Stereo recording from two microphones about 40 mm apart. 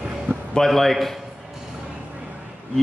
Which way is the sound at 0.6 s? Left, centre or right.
Centre.